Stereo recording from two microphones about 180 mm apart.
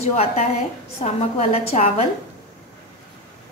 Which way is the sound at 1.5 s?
35° left (ahead or behind).